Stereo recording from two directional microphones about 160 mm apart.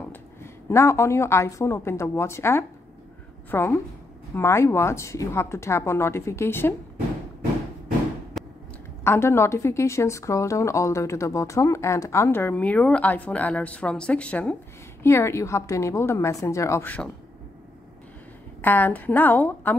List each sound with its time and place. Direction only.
0.1 s a woman's voice: 15° left (ahead or behind)
8.3 s a sound: centre (ahead or behind)
9.0 s a woman's voice: 15° left (ahead or behind)
18.6 s a woman's voice: 10° left (ahead or behind)